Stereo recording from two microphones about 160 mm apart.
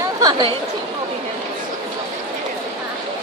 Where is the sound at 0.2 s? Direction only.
25° right (ahead or behind).